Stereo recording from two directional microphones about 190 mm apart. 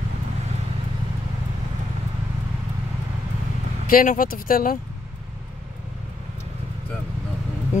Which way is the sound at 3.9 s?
50° left (ahead or behind).